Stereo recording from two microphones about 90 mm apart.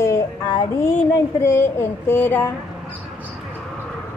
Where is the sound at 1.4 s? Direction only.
30° left (ahead or behind).